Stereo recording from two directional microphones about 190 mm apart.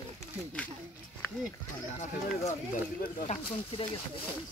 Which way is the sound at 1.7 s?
40° left (ahead or behind).